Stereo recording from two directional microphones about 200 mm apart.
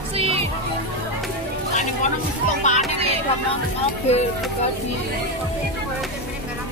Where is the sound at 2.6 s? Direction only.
35° left (ahead or behind).